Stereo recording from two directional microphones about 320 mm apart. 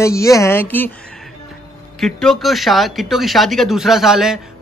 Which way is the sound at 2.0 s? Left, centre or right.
Centre.